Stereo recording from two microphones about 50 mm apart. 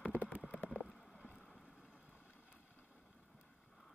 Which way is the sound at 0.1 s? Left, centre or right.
Right.